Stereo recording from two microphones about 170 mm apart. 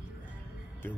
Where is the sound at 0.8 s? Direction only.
15° left (ahead or behind).